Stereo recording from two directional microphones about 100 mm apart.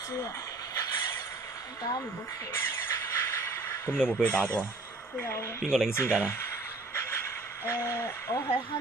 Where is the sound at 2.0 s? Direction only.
20° left (ahead or behind).